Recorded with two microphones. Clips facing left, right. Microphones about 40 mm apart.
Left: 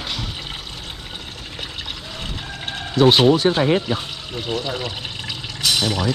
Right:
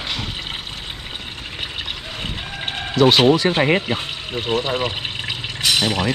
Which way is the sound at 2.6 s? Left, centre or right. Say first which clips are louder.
Right 3 dB; right.